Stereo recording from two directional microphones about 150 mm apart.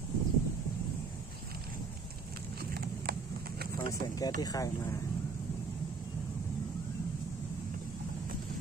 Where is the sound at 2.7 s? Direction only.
90° right.